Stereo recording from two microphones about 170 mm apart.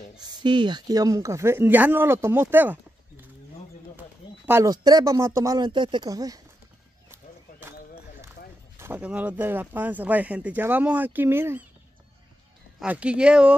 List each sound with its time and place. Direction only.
0.4 s speech: 25° right (ahead or behind); by 3.3 s 10° right (ahead or behind)
4.5 s speech: 20° right (ahead or behind)
8.7 s speech: 10° right (ahead or behind)
12.7 s speech: 5° right (ahead or behind)